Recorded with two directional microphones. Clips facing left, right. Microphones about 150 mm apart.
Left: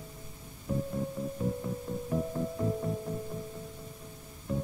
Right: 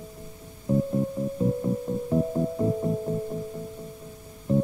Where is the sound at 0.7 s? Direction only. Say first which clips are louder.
Right 9 dB; 25° right (ahead or behind).